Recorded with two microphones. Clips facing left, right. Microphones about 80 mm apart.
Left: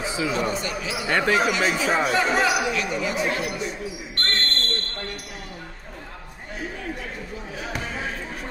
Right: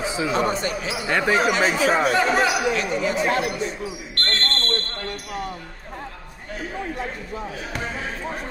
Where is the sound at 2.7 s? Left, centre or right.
Right.